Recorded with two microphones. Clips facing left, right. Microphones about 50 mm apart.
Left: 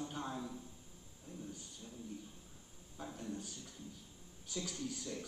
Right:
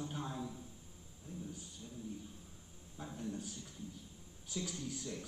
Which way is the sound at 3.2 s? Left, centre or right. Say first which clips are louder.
Right 4 dB; centre.